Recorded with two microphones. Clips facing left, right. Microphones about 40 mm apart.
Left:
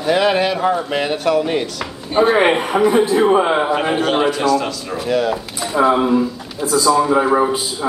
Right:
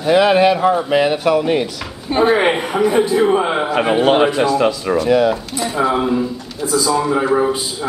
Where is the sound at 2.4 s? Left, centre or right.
Centre.